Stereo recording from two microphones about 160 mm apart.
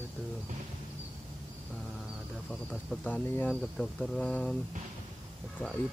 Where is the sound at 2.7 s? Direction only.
5° left (ahead or behind).